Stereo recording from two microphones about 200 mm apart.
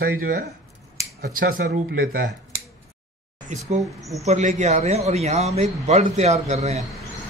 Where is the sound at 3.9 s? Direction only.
Centre (ahead or behind).